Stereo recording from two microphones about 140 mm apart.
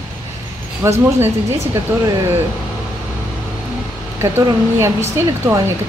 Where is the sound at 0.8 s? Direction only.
20° right (ahead or behind).